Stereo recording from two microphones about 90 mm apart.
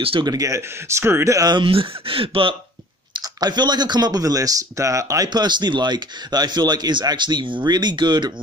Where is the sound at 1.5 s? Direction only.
85° right.